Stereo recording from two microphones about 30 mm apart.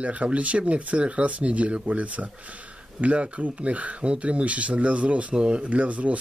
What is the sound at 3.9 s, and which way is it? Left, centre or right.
Speech, right.